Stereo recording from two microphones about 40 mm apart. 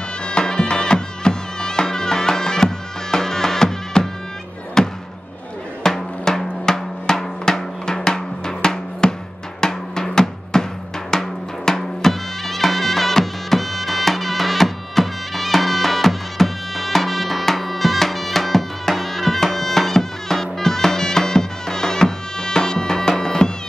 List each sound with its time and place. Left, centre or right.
0.3 s music: left
4.8 s a sound: centre
5.9 s drum: centre
11.1 s music: centre